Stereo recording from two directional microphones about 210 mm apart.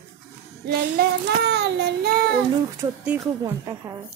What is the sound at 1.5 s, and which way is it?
Child singing, 55° right (ahead or behind).